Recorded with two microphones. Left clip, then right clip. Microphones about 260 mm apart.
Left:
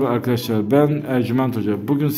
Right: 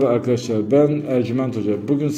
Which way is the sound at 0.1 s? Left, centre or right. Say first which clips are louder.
Right 2 dB; left.